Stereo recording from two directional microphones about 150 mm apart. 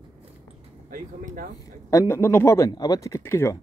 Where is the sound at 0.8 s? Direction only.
65° right (ahead or behind).